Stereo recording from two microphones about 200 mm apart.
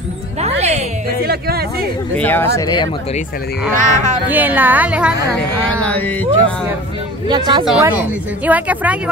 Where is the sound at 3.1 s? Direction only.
50° left (ahead or behind).